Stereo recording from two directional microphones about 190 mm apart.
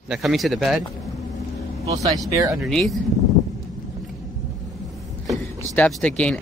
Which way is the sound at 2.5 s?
Centre (ahead or behind).